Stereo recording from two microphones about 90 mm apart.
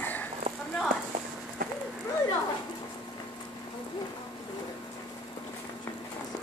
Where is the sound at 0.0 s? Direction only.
20° left (ahead or behind).